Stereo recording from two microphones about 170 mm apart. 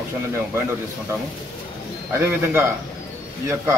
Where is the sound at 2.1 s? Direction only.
15° right (ahead or behind).